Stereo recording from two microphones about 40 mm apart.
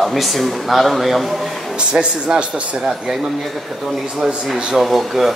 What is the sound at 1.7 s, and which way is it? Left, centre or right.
A man's voice, right.